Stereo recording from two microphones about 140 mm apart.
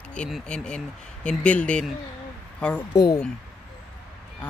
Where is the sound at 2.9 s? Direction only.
25° left (ahead or behind).